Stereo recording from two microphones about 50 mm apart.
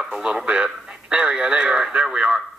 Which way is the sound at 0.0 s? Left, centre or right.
Centre.